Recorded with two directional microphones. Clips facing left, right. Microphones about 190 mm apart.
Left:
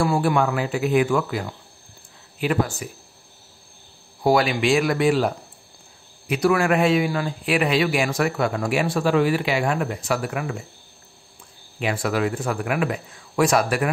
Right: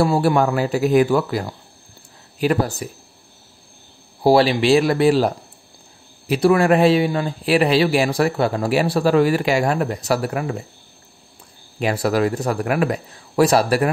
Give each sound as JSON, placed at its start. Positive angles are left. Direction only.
{"t": 0.2, "sound": "a man's voice", "side_deg": -35}
{"t": 4.2, "sound": "a man's voice", "side_deg": -30}
{"t": 11.8, "sound": "a man's voice", "side_deg": -40}